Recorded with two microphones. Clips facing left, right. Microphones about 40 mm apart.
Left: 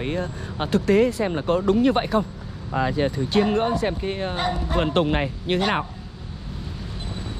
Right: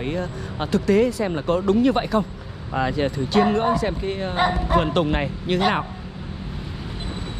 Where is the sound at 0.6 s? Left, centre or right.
Left.